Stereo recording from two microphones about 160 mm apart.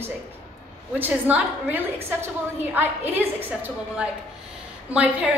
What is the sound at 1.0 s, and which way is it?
A woman's voice, 10° right (ahead or behind).